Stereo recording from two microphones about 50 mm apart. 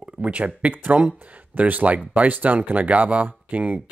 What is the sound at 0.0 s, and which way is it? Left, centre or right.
Speech, right.